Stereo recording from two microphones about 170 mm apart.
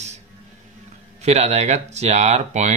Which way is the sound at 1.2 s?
40° right (ahead or behind).